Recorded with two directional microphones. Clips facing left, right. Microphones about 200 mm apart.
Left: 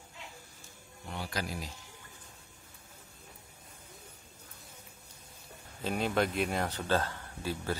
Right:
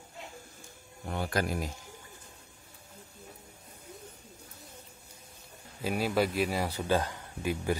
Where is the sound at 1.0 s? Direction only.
50° right (ahead or behind).